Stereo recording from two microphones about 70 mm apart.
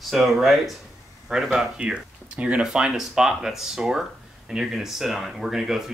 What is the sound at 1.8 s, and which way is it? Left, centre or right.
Speech, centre.